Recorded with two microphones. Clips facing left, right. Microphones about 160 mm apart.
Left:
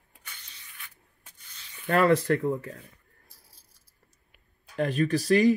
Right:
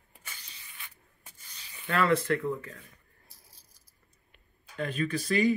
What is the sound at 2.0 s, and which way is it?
Speech, 40° left (ahead or behind).